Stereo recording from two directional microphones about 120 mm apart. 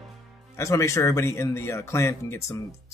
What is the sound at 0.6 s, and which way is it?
Speech, 25° left (ahead or behind).